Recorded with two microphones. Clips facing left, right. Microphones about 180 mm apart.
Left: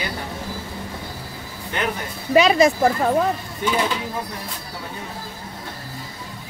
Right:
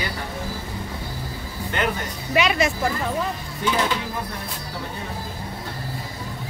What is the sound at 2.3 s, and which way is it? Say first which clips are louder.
Speech: left 6 dB; 35° left (ahead or behind).